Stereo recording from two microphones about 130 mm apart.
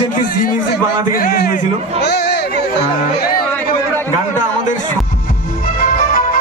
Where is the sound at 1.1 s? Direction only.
90° left.